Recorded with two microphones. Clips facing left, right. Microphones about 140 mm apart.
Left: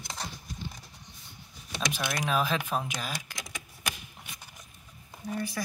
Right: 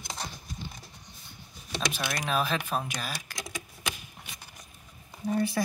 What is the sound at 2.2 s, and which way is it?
Speech, 15° left (ahead or behind).